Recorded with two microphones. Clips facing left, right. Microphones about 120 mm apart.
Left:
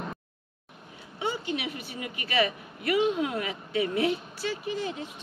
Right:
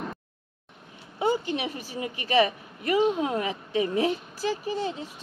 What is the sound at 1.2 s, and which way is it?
A woman's voice, 40° right (ahead or behind).